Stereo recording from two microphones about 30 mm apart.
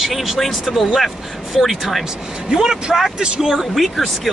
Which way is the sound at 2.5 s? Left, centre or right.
Right.